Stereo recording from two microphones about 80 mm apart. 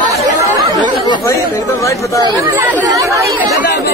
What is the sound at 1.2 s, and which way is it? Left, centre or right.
Speech, left.